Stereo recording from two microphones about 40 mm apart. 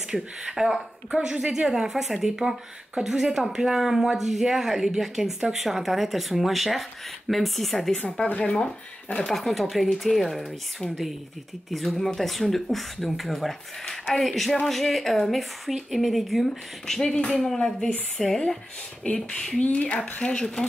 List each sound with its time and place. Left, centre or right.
0.1 s speech: centre
8.4 s speech: left
9.2 s speech: centre
17.0 s speech: left
17.3 s speech: centre
19.0 s speech: left
19.6 s speech: left
20.2 s speech: left